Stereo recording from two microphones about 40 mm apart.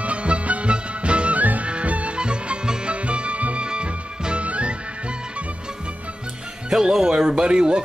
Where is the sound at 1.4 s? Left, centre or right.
Right.